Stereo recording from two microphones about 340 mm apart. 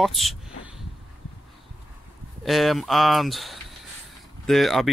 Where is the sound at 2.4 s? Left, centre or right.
Centre.